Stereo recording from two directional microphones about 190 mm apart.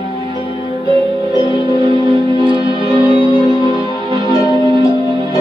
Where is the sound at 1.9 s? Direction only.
25° right (ahead or behind).